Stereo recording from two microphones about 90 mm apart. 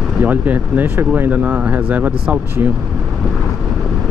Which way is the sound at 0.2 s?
20° right (ahead or behind).